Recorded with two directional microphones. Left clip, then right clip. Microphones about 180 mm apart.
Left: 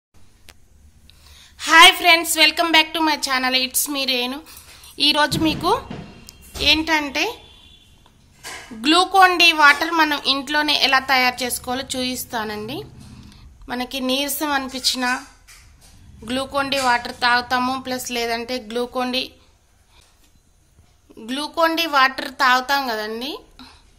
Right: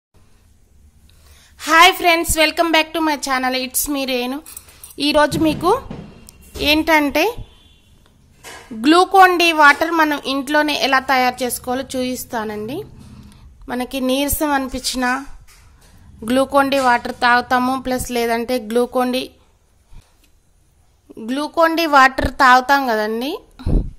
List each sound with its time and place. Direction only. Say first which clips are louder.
1.2 s a woman's voice: even; 40° right (ahead or behind)
8.8 s a woman's voice: right 3 dB; 35° right (ahead or behind)
16.3 s a woman's voice: right 7 dB; 40° right (ahead or behind)
21.1 s a woman's voice: right 4 dB; 40° right (ahead or behind)